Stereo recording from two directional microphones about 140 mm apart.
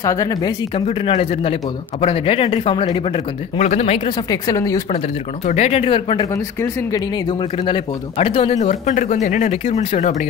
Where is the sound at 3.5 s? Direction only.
55° left (ahead or behind).